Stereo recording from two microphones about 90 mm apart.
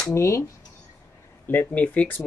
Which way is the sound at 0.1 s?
30° left (ahead or behind).